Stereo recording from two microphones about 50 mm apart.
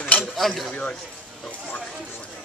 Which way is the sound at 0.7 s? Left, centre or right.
Left.